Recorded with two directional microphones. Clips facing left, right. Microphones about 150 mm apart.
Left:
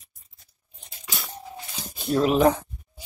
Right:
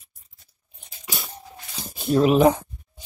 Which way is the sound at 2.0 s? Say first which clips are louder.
Right 3 dB; 5° right (ahead or behind).